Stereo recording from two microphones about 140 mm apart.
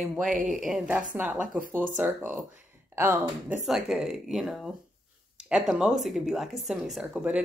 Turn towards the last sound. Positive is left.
turn(degrees=-10)  # may be behind; listen again after turning